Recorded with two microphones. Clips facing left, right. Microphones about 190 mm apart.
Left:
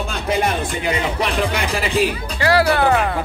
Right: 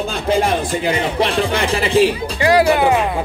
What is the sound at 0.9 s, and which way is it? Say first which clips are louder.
Speech: right 3 dB; 30° right (ahead or behind).